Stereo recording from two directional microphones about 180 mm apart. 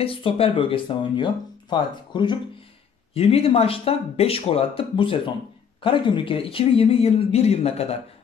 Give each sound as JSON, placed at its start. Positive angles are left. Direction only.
{"t": 0.0, "sound": "speech", "side_deg": 30}